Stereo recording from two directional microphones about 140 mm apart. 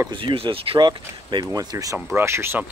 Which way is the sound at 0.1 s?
40° right (ahead or behind).